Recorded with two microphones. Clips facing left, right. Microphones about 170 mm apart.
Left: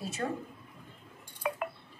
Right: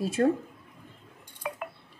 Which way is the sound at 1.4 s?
65° left (ahead or behind).